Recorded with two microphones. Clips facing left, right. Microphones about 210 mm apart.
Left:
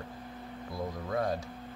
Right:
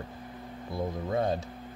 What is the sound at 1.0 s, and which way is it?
Speech, 25° right (ahead or behind).